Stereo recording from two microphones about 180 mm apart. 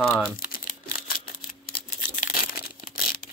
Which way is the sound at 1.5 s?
45° left (ahead or behind).